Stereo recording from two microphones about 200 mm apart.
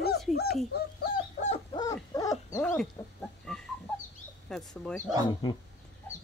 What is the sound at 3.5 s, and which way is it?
Bird, 5° left (ahead or behind).